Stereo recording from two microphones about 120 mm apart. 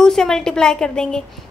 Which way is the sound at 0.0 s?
5° left (ahead or behind).